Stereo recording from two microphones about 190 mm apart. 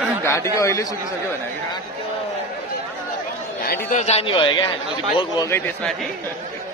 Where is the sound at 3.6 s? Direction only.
50° left (ahead or behind).